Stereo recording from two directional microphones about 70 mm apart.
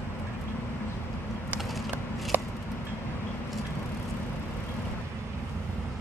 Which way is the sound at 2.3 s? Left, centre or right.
Right.